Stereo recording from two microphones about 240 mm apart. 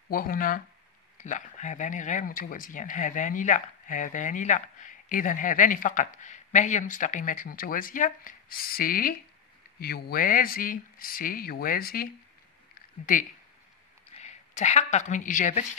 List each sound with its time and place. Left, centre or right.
0.1 s a woman's voice: left